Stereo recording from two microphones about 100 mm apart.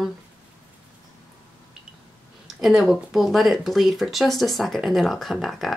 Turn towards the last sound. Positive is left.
turn(degrees=0)  # may be behind; listen again after turning